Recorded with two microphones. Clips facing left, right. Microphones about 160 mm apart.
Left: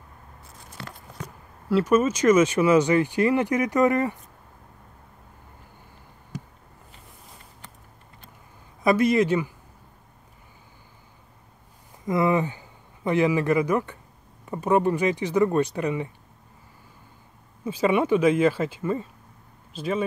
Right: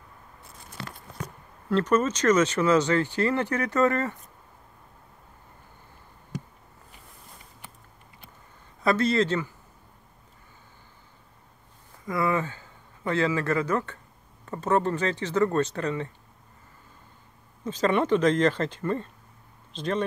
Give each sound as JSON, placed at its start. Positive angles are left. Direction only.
{"t": 1.7, "sound": "speech", "side_deg": 10}
{"t": 8.8, "sound": "speech", "side_deg": 15}
{"t": 12.1, "sound": "a man's voice", "side_deg": 20}
{"t": 17.6, "sound": "speech", "side_deg": 10}